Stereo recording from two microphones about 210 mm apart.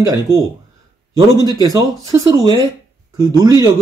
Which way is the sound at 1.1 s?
15° right (ahead or behind).